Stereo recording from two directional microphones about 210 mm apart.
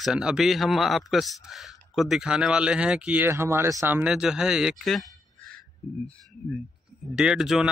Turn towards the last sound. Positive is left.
turn(degrees=0)  # may be behind; listen again after turning